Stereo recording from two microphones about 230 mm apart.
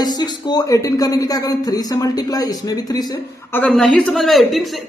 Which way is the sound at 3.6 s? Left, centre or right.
Centre.